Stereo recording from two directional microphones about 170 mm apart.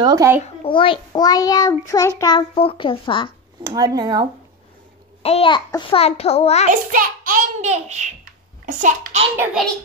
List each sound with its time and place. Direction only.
0.0 s speech: 20° right (ahead or behind)
0.4 s a child's voice: 30° left (ahead or behind)
3.6 s speech: 20° right (ahead or behind)
5.2 s a child's voice: 35° left (ahead or behind)
6.7 s a child's voice: 55° right (ahead or behind)